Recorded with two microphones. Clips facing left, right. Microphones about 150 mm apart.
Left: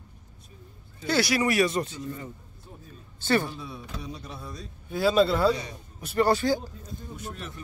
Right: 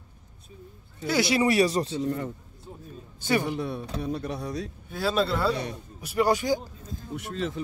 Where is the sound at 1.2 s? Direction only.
25° right (ahead or behind).